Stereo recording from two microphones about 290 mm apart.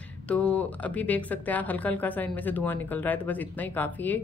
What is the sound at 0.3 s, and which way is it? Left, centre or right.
A woman's voice, centre.